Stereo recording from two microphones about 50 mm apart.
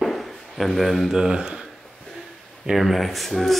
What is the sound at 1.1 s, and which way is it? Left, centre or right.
Speech, centre.